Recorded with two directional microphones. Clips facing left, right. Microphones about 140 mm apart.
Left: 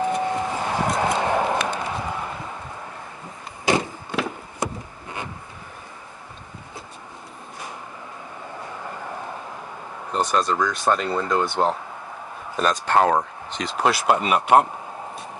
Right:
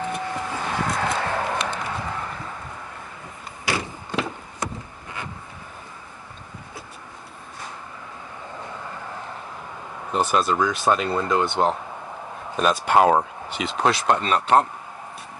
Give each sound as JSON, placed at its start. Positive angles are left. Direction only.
{"t": 0.1, "sound": "a sound", "side_deg": 20}
{"t": 3.7, "sound": "vehicle", "side_deg": 20}
{"t": 4.1, "sound": "a sound", "side_deg": 10}
{"t": 10.1, "sound": "speech", "side_deg": -10}
{"t": 12.5, "sound": "speech", "side_deg": -10}
{"t": 13.7, "sound": "speech", "side_deg": 5}